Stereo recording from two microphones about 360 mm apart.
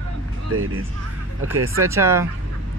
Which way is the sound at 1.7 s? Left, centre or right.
Centre.